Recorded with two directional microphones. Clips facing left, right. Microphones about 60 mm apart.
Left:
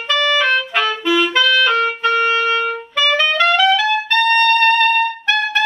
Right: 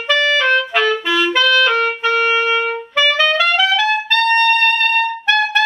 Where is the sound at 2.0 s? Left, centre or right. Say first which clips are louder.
Even; centre.